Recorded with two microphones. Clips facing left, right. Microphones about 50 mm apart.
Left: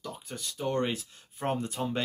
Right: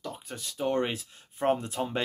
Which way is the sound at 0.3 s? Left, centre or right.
Centre.